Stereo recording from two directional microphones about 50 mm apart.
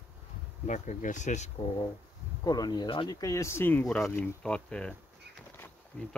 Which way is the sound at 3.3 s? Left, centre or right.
Left.